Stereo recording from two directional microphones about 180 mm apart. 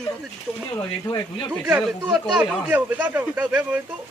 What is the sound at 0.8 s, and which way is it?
Speech, 25° left (ahead or behind).